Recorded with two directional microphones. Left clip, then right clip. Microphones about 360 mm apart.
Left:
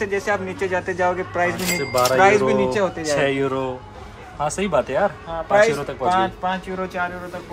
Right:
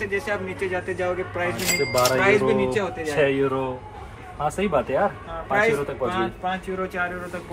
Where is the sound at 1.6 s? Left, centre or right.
Centre.